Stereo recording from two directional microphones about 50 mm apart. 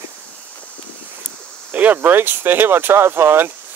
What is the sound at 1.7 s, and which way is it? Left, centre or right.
Speech, right.